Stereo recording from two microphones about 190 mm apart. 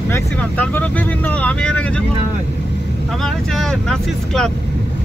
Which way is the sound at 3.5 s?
Centre (ahead or behind).